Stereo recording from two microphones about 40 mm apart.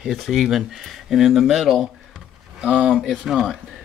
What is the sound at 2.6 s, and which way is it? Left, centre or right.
Speech, right.